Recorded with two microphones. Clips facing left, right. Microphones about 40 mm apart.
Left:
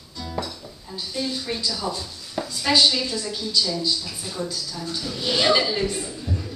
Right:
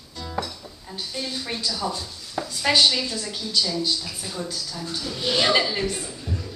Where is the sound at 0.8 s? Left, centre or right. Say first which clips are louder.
Even; right.